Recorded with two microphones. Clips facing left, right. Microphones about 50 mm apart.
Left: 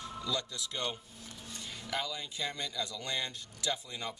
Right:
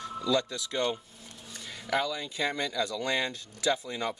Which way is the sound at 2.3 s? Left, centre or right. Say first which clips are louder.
Right 8 dB; right.